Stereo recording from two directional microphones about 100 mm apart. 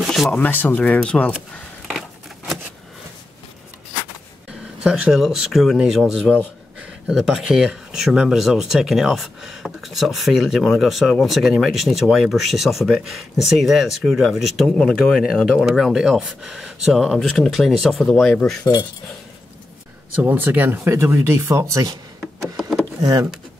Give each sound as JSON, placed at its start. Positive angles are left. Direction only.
{"t": 0.0, "sound": "a sound", "side_deg": 0}
{"t": 0.3, "sound": "speech", "side_deg": 15}
{"t": 1.9, "sound": "scissors", "side_deg": -5}
{"t": 4.8, "sound": "speech", "side_deg": -5}
{"t": 18.6, "sound": "cutlery", "side_deg": 45}
{"t": 20.2, "sound": "speech", "side_deg": -20}